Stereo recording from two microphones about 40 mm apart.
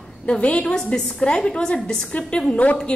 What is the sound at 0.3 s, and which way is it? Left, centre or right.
A woman's voice, left.